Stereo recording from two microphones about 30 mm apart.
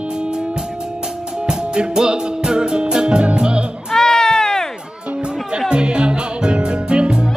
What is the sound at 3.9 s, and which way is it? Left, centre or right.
Sheep, centre.